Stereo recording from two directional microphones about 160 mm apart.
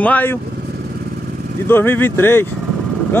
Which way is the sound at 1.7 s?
15° left (ahead or behind).